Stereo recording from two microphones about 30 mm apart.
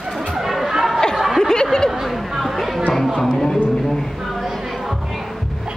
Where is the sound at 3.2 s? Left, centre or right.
Centre.